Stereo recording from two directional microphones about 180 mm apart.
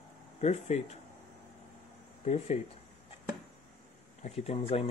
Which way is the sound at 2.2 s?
40° left (ahead or behind).